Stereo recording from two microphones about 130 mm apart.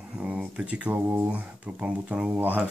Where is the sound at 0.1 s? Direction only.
10° right (ahead or behind).